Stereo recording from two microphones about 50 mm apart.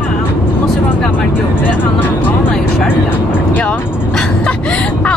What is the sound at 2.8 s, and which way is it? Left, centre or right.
Speech, left.